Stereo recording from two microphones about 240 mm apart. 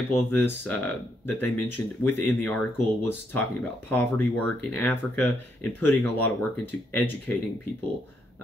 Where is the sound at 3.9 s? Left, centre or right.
Centre.